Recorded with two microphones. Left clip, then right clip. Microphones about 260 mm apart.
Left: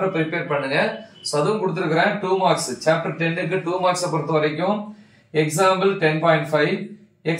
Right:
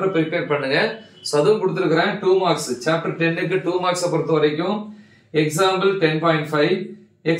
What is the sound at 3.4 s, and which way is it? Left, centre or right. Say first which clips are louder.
Speech: even; centre.